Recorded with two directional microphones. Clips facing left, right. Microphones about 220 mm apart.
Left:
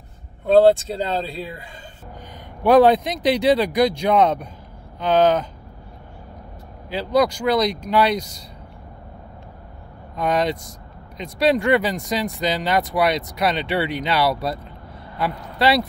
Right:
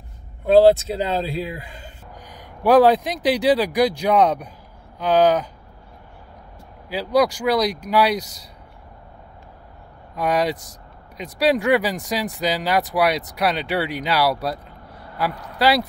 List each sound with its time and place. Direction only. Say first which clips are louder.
0.5 s a man's voice: right 1 dB; 10° right (ahead or behind)
7.2 s a man's voice: even; 5° right (ahead or behind)
10.1 s a man's voice: even; 10° right (ahead or behind)